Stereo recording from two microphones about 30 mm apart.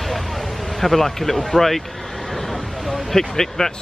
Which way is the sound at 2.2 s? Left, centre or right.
Centre.